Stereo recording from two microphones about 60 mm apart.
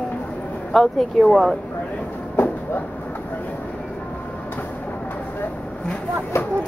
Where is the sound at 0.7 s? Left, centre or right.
Centre.